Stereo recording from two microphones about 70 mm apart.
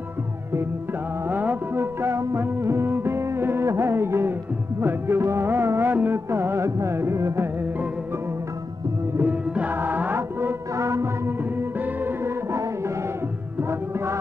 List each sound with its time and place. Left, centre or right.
1.3 s music: right
9.2 s music: right
13.6 s music: right